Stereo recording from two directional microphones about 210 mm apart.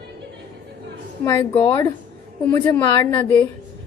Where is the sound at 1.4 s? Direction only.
15° left (ahead or behind).